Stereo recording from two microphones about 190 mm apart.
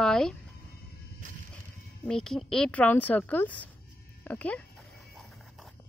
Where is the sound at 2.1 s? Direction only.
5° left (ahead or behind).